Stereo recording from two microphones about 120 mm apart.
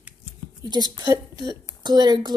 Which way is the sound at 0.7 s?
35° right (ahead or behind).